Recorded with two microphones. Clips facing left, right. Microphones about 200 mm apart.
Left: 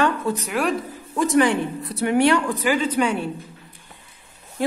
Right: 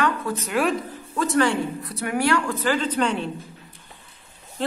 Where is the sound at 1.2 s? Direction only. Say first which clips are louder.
Left 3 dB; 15° left (ahead or behind).